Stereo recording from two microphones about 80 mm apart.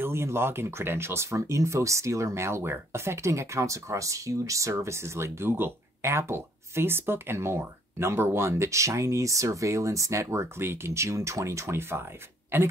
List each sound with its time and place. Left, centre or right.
0.0 s speech: right